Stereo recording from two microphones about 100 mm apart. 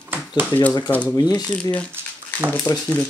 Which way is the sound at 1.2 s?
45° left (ahead or behind).